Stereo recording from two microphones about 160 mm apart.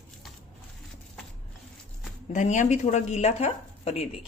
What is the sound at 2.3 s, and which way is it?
A woman's voice, 50° left (ahead or behind).